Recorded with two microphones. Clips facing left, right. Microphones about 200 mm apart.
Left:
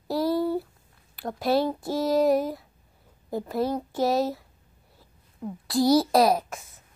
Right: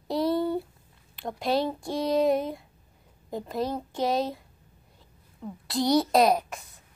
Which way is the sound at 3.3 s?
10° left (ahead or behind).